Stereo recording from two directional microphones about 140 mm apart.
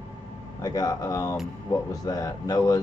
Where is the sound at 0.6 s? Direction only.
25° left (ahead or behind).